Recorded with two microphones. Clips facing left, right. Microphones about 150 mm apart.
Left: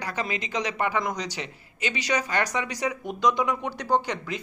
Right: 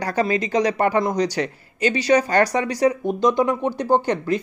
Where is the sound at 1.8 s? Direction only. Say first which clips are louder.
Right 10 dB; 35° right (ahead or behind).